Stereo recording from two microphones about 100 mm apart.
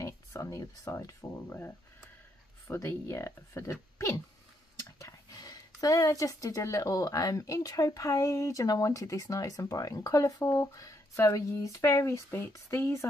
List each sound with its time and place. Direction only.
0.0 s speech: 30° left (ahead or behind)
2.7 s speech: 25° left (ahead or behind)
4.7 s speech: 30° left (ahead or behind)